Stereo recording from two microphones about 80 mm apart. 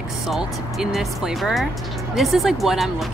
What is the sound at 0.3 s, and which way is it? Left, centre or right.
Speech, centre.